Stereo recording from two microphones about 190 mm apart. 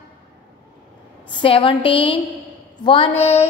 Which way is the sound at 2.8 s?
30° left (ahead or behind).